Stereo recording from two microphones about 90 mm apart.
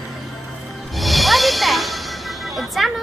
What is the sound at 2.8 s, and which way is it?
Speech, centre (ahead or behind).